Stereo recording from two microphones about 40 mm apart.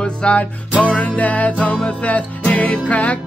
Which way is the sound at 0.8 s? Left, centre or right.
Left.